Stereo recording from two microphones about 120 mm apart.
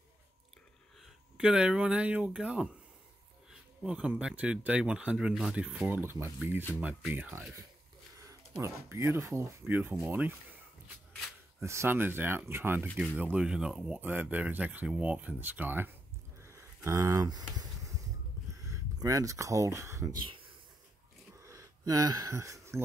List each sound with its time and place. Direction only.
1.4 s speech: 10° right (ahead or behind)
3.8 s speech: 10° right (ahead or behind)
8.3 s speech: 25° right (ahead or behind)
11.6 s speech: 20° right (ahead or behind)
16.3 s a sound: 20° right (ahead or behind)
18.6 s speech: 30° right (ahead or behind)
21.5 s speech: 30° right (ahead or behind)